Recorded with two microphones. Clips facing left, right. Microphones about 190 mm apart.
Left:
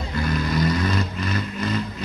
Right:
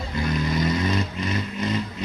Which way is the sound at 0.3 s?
20° right (ahead or behind).